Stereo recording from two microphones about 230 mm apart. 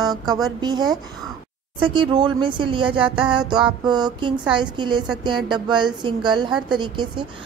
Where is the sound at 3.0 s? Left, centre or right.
Centre.